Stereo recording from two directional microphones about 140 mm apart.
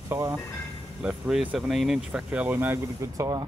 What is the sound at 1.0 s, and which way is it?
Speech, 5° right (ahead or behind).